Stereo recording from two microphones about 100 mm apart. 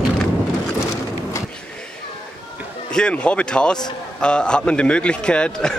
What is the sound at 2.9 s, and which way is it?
A man's voice, 10° left (ahead or behind).